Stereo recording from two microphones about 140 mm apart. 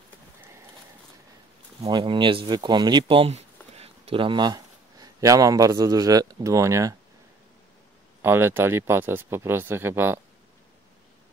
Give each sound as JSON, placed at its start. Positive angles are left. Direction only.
{"t": 1.9, "sound": "speech", "side_deg": -35}
{"t": 8.2, "sound": "speech", "side_deg": -15}